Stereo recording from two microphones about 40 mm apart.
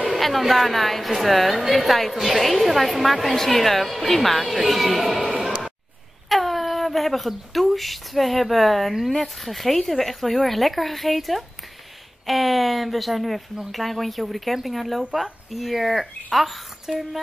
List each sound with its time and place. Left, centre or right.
0.0 s a woman's voice: centre